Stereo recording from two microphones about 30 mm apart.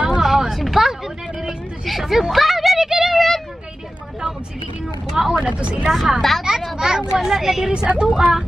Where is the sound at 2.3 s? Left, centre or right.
Centre.